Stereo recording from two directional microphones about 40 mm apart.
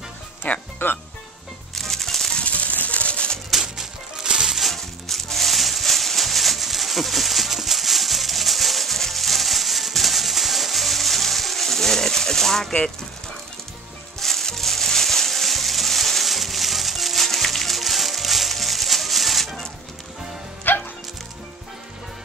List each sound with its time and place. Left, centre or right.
0.4 s speech: left
1.8 s music: centre
2.4 s music: left
3.6 s music: centre
4.6 s a sound: centre
14.2 s music: centre
20.7 s music: left